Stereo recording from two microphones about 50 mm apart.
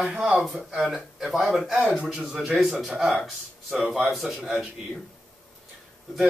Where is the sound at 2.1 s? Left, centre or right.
Centre.